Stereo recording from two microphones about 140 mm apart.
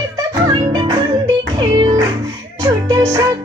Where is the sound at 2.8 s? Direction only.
25° right (ahead or behind).